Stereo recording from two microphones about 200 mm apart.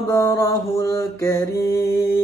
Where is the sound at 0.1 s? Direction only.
15° left (ahead or behind).